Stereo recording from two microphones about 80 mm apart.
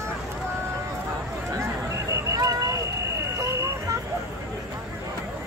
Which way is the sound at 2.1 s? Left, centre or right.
Right.